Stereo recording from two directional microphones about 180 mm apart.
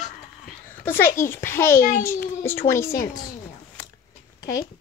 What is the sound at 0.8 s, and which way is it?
A child's voice, 10° left (ahead or behind).